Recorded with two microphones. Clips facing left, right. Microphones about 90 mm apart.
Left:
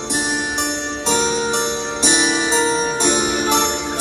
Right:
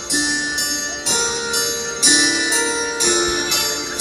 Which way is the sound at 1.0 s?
45° left (ahead or behind).